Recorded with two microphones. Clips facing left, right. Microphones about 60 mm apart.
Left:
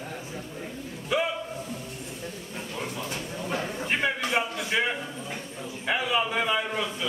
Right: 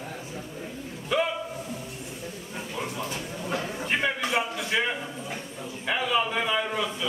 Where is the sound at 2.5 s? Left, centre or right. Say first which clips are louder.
Right 2 dB; centre.